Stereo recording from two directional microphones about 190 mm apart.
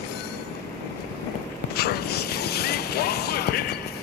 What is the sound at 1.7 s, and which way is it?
Vehicle, 55° left (ahead or behind).